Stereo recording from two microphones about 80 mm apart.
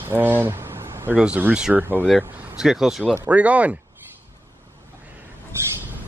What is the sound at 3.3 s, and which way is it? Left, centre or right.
Speech, centre.